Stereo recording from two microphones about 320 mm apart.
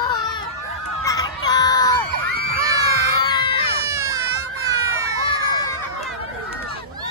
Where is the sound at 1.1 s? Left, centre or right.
Centre.